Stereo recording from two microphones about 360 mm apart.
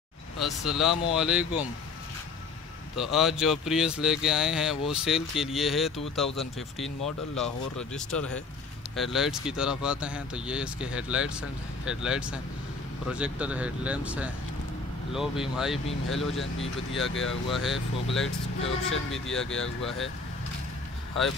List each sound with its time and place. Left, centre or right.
0.4 s speech: centre
3.0 s speech: centre
7.9 s speech: centre
17.1 s speech: left
17.5 s speech: centre
18.1 s speech: left
19.1 s speech: centre